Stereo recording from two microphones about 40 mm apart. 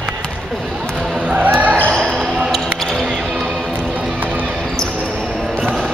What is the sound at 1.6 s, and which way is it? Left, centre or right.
Basketball bounce, right.